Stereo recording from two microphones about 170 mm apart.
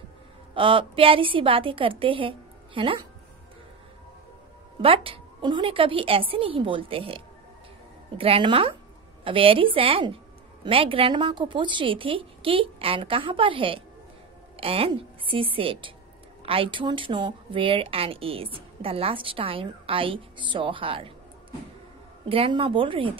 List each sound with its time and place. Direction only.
0.6 s speech: 30° right (ahead or behind)
4.8 s speech: 30° right (ahead or behind)
22.3 s speech: 35° right (ahead or behind)